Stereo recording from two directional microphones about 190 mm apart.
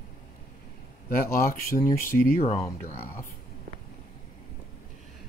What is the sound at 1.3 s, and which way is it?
Speech, 45° left (ahead or behind).